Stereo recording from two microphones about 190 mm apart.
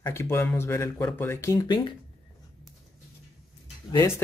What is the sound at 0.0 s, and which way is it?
Speech, 15° left (ahead or behind).